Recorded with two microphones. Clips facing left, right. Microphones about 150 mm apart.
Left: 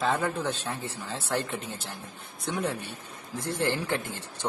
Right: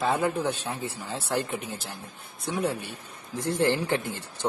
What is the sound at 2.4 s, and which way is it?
Speech, centre (ahead or behind).